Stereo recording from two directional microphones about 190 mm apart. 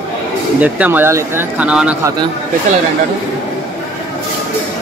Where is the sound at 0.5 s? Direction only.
10° right (ahead or behind).